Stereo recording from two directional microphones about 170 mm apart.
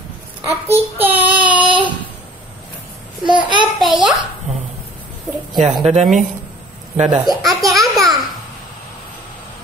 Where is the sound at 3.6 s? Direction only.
Centre (ahead or behind).